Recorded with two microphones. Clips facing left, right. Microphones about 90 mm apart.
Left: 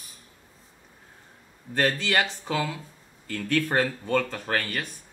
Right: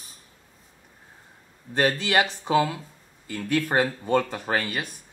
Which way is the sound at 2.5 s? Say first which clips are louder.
Right 6 dB; 30° right (ahead or behind).